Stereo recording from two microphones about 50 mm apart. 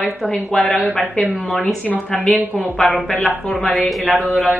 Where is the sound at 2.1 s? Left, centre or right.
Left.